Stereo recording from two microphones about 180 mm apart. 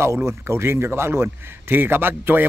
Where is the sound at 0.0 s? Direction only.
15° right (ahead or behind).